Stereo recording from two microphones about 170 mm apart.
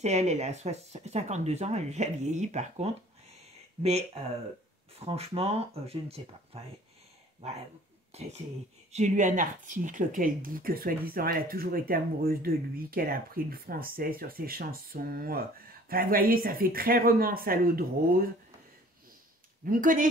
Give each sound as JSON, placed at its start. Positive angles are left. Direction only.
{"t": 0.0, "sound": "speech", "side_deg": -40}
{"t": 8.1, "sound": "speech", "side_deg": -35}
{"t": 19.6, "sound": "speech", "side_deg": -50}